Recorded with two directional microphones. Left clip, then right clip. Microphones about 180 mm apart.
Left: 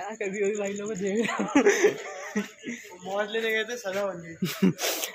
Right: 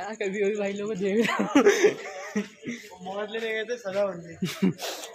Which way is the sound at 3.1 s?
65° left (ahead or behind).